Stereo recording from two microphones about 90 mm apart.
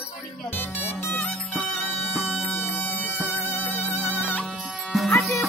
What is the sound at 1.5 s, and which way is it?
Music, centre (ahead or behind).